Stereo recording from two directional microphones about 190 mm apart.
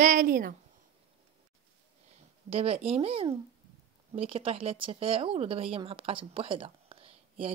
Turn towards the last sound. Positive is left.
turn(degrees=-30)  # may be behind; listen again after turning